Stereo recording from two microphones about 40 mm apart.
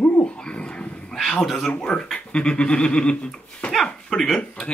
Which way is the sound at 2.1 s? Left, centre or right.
Left.